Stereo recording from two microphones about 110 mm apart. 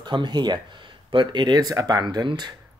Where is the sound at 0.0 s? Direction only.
45° right (ahead or behind).